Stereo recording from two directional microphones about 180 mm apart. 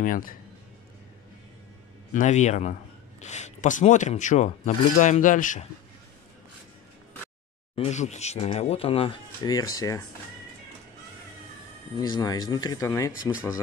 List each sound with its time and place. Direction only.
0.0 s speech: 50° left (ahead or behind)
2.1 s speech: 40° left (ahead or behind)
7.7 s speech: 35° left (ahead or behind); by 10.0 s 20° left (ahead or behind)
12.0 s speech: 20° left (ahead or behind)